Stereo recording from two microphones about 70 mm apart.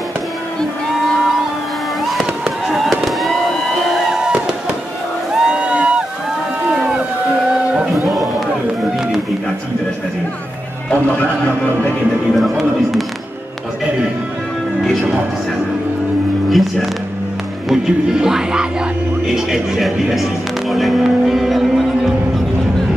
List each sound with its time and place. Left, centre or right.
2.7 s fireworks: centre
5.3 s a sound: centre
6.7 s run: centre
8.1 s a sound: centre
10.9 s a man's voice: centre
12.4 s music: centre
16.4 s music: centre
20.7 s vehicle: centre